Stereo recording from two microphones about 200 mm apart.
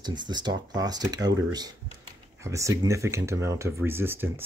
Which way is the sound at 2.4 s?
15° right (ahead or behind).